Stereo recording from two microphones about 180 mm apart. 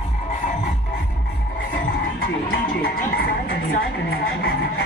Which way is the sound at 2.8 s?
55° left (ahead or behind).